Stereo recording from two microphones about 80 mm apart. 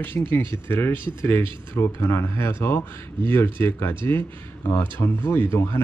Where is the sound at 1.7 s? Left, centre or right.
Left.